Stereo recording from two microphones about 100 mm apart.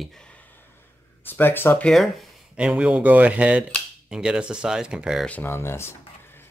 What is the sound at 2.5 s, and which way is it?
Speech, 10° right (ahead or behind).